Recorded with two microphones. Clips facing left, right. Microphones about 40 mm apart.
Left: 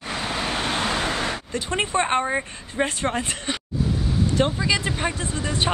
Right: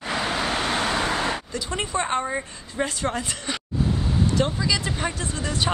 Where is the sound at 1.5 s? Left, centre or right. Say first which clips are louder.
Left 3 dB; left.